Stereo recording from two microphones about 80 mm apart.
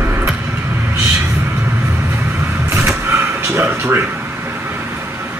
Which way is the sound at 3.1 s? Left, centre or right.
Right.